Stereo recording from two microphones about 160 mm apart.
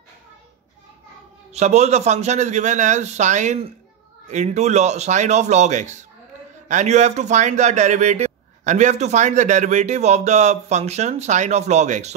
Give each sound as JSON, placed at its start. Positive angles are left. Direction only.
{"t": 1.5, "sound": "speech", "side_deg": -45}